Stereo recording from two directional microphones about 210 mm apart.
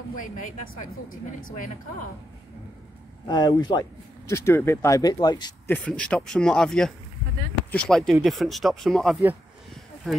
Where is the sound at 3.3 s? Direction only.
20° left (ahead or behind).